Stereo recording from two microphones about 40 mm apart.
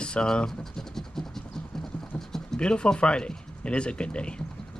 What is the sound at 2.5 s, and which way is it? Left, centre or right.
Speech, left.